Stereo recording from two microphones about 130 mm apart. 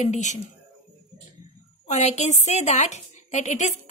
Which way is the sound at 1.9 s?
60° left (ahead or behind).